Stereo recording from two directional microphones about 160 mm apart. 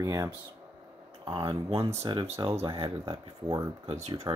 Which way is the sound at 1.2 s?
30° right (ahead or behind).